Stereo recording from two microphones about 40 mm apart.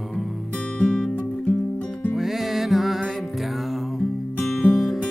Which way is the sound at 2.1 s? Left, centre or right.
Centre.